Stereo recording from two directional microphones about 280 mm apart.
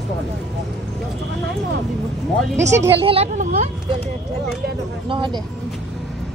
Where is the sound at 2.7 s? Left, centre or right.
Centre.